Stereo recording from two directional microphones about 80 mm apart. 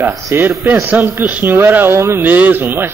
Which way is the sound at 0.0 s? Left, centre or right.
Right.